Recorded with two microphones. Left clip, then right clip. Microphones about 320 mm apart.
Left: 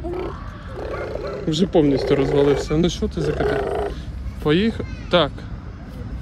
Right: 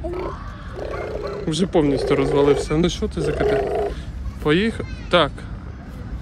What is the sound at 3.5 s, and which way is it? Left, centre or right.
Roar, centre.